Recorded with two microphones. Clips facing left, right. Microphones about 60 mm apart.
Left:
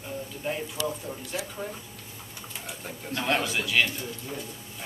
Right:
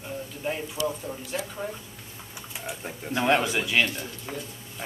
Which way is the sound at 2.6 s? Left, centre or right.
Right.